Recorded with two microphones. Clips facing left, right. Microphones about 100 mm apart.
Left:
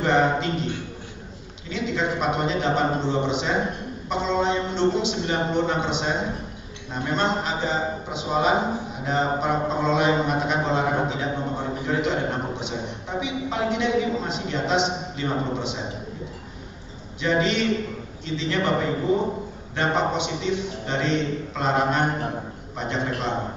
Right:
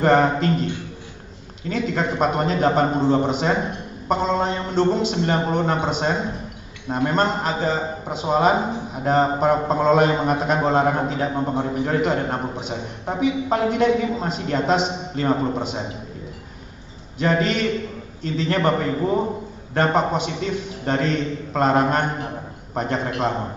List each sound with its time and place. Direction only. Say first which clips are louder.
0.0 s mantra: right 4 dB; 45° right (ahead or behind)
17.2 s mantra: right 2 dB; 45° right (ahead or behind)